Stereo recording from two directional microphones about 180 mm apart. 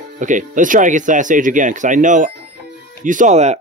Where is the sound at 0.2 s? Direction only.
45° right (ahead or behind).